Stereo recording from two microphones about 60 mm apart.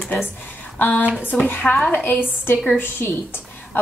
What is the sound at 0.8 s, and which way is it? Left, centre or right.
A woman's voice, left.